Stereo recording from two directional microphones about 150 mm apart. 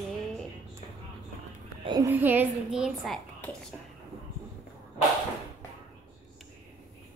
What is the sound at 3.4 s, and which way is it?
Whispering, 10° left (ahead or behind).